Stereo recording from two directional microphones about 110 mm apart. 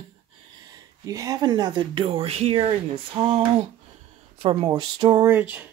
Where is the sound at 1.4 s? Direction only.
40° right (ahead or behind).